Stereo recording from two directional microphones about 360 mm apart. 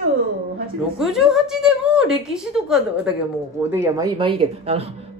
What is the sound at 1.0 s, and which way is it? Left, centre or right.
A woman's voice, centre.